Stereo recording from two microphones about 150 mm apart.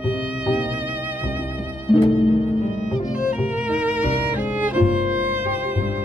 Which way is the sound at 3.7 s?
10° right (ahead or behind).